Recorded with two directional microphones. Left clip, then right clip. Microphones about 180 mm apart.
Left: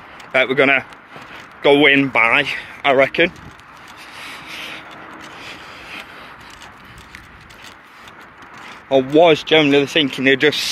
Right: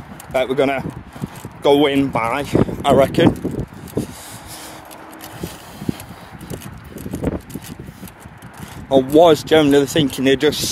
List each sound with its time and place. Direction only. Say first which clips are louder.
0.3 s speech: left 3 dB; 20° right (ahead or behind)
3.0 s speech: left 1 dB; 35° right (ahead or behind)
4.0 s a sound: left 4 dB; 30° right (ahead or behind)
8.8 s speech: right 1 dB; 35° right (ahead or behind)